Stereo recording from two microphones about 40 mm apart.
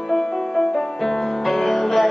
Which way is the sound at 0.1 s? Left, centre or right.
Centre.